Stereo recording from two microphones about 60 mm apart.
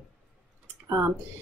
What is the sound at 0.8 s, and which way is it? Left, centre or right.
Speech, right.